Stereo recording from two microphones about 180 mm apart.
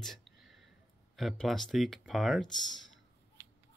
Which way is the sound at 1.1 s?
Centre (ahead or behind).